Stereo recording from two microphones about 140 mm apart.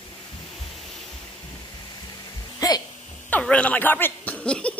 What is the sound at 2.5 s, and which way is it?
Music, 25° left (ahead or behind).